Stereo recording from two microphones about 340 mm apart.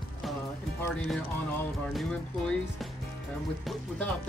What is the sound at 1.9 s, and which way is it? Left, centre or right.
Speech, centre.